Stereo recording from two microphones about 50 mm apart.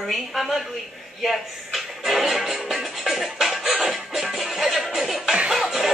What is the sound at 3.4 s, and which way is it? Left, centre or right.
Music, centre.